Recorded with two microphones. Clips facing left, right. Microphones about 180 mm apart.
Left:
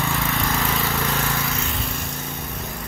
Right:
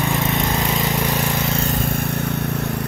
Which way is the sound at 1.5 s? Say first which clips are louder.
Right 7 dB; 40° right (ahead or behind).